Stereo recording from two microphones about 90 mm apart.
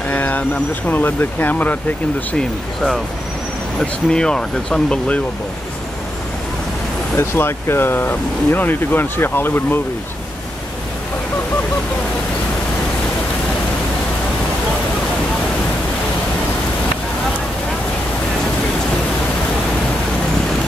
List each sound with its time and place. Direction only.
0.1 s speech: 20° left (ahead or behind)
2.3 s speech: 5° left (ahead or behind)
7.2 s speech: 30° left (ahead or behind)